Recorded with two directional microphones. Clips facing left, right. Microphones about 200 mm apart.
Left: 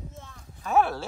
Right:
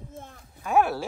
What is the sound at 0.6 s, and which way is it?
Speech, 10° right (ahead or behind).